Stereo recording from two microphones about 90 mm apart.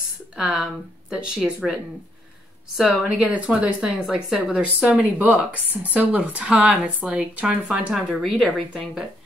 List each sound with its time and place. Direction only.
0.4 s speech: 5° right (ahead or behind)
3.2 s speech: 15° right (ahead or behind)
3.8 s speech: 5° right (ahead or behind)
8.2 s speech: centre (ahead or behind)